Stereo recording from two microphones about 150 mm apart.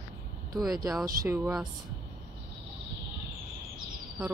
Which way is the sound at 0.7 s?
25° right (ahead or behind).